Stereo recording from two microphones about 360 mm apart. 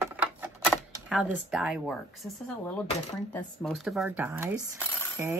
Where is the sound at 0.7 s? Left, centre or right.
Centre.